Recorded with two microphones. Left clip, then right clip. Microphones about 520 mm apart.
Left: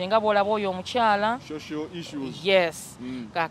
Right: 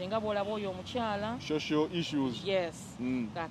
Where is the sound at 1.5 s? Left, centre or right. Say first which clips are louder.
Right 2 dB; centre.